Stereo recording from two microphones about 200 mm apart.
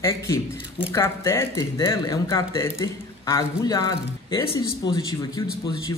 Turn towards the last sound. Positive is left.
turn(degrees=15)  # may be behind; listen again after turning